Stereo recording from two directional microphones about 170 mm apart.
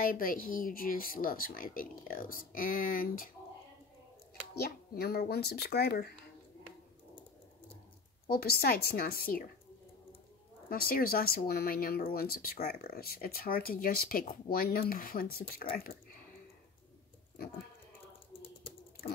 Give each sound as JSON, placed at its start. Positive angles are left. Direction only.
{"t": 0.0, "sound": "speech", "side_deg": 55}
{"t": 4.6, "sound": "a child's voice", "side_deg": 65}
{"t": 8.3, "sound": "speech", "side_deg": 65}
{"t": 10.7, "sound": "speech", "side_deg": 60}